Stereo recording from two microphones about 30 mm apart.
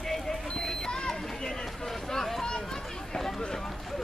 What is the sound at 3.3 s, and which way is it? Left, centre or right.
Run, centre.